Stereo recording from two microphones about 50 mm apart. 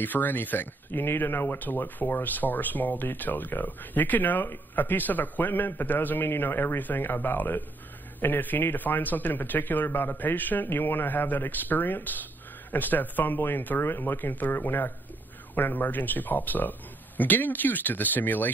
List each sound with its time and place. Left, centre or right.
0.0 s a man's voice: left